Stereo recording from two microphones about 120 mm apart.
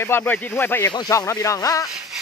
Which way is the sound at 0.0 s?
20° left (ahead or behind).